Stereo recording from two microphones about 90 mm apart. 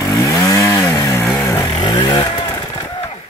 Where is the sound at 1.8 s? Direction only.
55° left (ahead or behind).